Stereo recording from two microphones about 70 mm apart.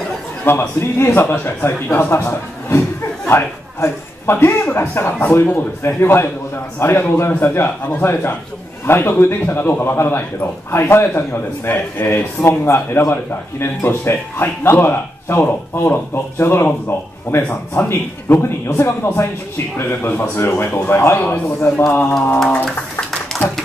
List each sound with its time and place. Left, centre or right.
0.5 s a man's voice: left
12.4 s a man's voice: left
22.7 s a sound: centre